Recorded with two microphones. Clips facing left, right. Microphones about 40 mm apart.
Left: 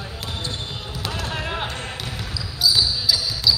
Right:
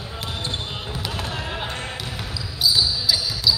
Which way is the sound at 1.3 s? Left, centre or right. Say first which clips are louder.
Left 2 dB; centre.